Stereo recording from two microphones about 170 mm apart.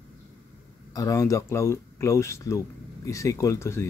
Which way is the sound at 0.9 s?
20° left (ahead or behind).